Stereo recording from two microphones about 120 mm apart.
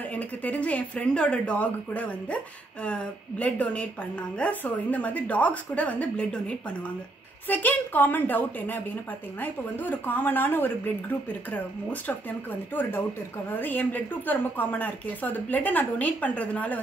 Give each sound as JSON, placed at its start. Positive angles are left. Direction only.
{"t": 0.1, "sound": "speech", "side_deg": 15}
{"t": 13.5, "sound": "speech", "side_deg": 15}